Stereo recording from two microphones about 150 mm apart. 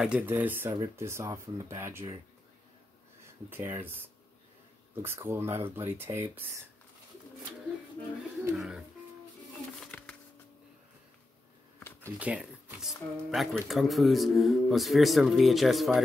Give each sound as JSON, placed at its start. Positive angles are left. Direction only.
{"t": 0.0, "sound": "speech", "side_deg": -10}
{"t": 3.4, "sound": "speech", "side_deg": -15}
{"t": 8.5, "sound": "speech", "side_deg": -5}
{"t": 9.8, "sound": "a sound", "side_deg": 10}
{"t": 12.2, "sound": "speech", "side_deg": -5}